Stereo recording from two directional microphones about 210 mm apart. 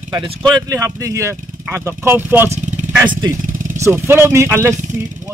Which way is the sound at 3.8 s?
10° right (ahead or behind).